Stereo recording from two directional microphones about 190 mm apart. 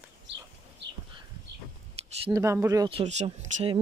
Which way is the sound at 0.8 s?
65° right (ahead or behind).